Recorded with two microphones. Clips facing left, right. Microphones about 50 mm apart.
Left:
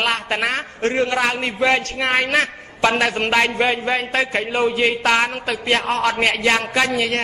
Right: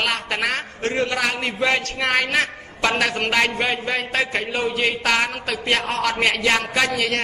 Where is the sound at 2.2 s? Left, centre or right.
Left.